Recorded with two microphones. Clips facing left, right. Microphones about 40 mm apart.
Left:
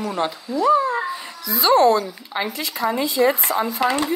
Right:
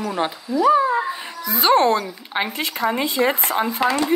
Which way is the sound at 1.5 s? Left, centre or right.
Right.